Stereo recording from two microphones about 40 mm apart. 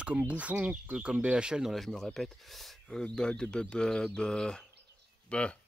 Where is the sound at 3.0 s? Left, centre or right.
Left.